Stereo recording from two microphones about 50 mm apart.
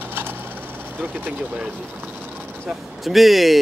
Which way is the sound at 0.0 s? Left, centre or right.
Right.